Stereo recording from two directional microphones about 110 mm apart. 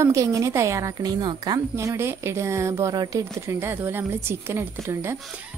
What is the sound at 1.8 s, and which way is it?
Speech, 25° right (ahead or behind).